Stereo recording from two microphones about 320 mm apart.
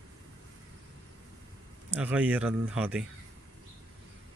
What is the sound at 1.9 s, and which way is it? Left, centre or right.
Speech, centre.